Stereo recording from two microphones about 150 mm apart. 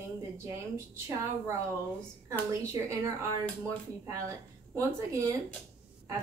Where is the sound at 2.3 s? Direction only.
20° right (ahead or behind).